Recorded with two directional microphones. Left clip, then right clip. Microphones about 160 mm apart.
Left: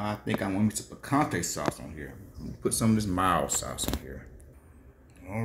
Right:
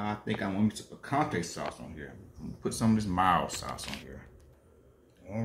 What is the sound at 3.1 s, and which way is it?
Speech, 10° right (ahead or behind).